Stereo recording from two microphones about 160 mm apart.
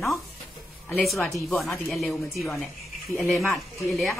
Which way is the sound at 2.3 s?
Centre (ahead or behind).